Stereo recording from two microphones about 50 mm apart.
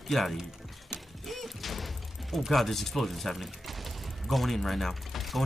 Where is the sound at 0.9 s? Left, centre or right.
Centre.